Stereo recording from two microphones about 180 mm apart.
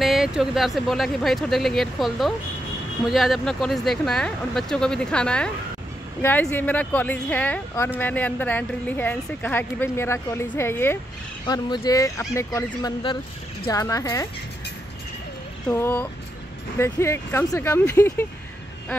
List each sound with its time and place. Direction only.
0.0 s speech: centre (ahead or behind); by 14.3 s 20° left (ahead or behind)
15.7 s speech: 10° left (ahead or behind)